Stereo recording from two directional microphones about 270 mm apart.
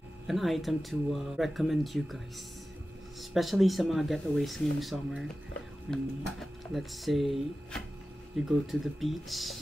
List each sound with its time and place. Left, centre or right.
0.3 s speech: centre